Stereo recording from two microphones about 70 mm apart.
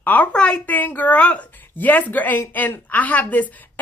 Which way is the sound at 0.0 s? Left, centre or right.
Left.